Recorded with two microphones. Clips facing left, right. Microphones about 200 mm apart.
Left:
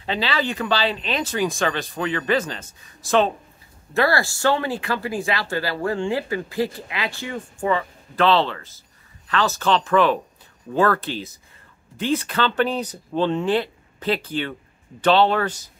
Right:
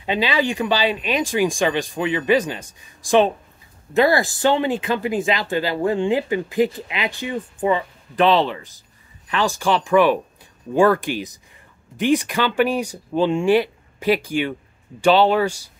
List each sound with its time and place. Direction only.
0.0 s speech: 15° right (ahead or behind)